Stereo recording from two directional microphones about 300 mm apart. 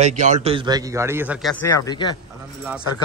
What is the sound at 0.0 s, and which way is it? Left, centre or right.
A man's voice, right.